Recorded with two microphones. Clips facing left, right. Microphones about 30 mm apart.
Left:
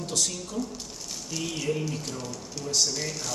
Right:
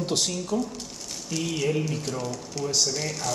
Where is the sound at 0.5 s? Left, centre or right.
Centre.